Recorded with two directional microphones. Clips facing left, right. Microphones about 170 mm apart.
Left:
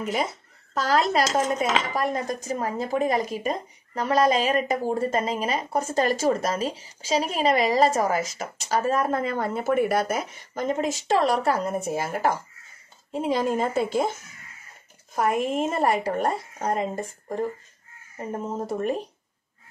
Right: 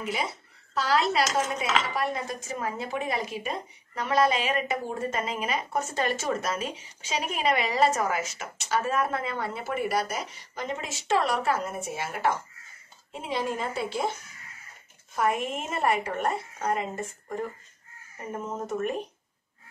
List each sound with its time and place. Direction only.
0.0 s speech: 45° left (ahead or behind)
15.1 s speech: 40° left (ahead or behind)